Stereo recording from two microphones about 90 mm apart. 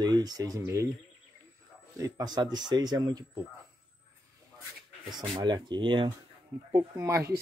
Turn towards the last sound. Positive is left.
turn(degrees=-30)  # may be behind; listen again after turning